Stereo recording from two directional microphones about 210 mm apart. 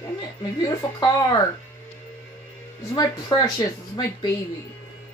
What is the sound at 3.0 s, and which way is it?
Speech, 20° left (ahead or behind).